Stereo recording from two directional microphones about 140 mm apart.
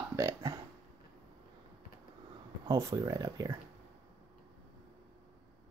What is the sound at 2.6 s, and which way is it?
Speech, 25° right (ahead or behind).